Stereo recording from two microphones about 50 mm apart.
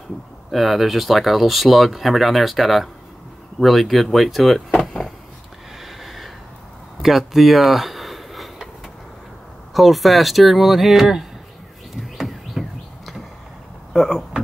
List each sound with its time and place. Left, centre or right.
0.5 s speech: centre
4.7 s power windows: centre
6.0 s a sound: centre
9.8 s speech: centre
11.9 s bird: centre
13.9 s speech: centre